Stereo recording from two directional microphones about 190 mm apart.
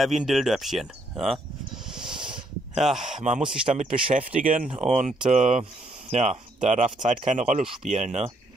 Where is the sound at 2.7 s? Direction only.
Centre (ahead or behind).